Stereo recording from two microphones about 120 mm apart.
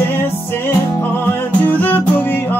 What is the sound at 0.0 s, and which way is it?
Music, 20° left (ahead or behind).